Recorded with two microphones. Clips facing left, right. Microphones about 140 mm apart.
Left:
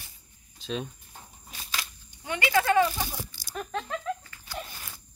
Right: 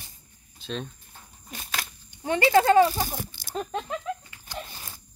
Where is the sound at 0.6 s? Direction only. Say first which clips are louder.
Left 1 dB; 5° left (ahead or behind).